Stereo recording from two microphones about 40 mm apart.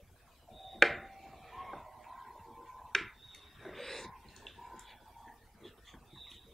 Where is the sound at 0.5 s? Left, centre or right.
Centre.